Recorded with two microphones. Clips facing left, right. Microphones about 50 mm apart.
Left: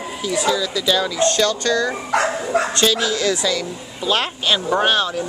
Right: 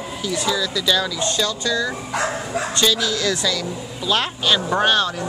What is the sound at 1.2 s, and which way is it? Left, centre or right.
Speech, left.